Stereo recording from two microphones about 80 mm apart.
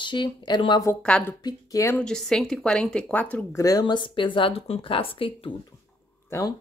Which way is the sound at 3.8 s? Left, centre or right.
Left.